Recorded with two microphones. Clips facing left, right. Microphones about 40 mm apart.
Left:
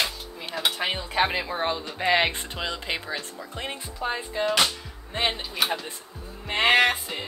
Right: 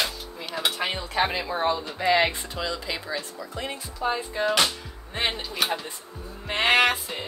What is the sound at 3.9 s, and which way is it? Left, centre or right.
Speech, centre.